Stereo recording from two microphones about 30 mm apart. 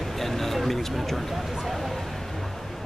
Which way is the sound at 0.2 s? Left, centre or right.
Centre.